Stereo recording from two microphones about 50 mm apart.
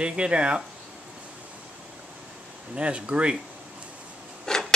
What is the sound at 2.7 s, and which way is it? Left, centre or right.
Speech, right.